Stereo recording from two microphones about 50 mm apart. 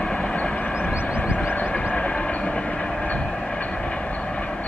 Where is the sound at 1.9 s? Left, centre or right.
Left.